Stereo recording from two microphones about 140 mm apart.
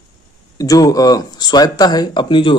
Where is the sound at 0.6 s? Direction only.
25° left (ahead or behind).